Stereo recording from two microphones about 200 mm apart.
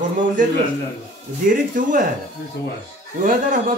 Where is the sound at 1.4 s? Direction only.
40° right (ahead or behind).